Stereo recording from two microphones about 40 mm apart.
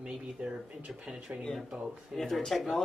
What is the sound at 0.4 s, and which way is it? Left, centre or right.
Speech, right.